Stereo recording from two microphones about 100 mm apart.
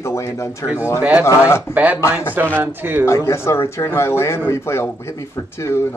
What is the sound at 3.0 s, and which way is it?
A man's voice, 30° left (ahead or behind).